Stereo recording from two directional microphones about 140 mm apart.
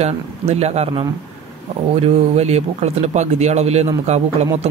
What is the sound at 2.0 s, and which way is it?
Speech, 50° right (ahead or behind).